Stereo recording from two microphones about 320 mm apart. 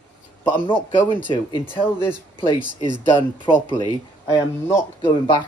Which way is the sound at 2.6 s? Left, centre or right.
Centre.